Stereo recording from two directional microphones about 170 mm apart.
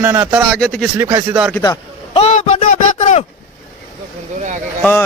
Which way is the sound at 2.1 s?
40° left (ahead or behind).